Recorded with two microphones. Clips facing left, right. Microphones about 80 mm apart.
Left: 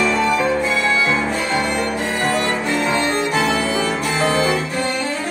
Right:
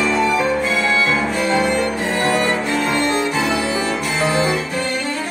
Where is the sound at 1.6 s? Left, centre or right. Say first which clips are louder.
Right 2 dB; centre.